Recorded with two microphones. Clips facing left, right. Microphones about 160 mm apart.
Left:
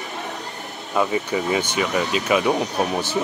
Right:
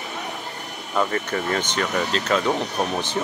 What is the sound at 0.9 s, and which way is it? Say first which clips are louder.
Speech: left 2 dB; 10° left (ahead or behind).